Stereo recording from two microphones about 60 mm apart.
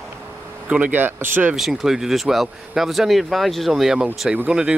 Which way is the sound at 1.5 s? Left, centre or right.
Centre.